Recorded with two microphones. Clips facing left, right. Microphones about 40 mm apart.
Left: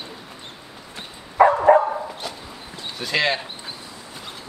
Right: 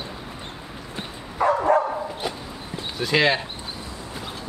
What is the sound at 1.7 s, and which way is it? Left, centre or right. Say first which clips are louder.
Dog: left 4 dB; left.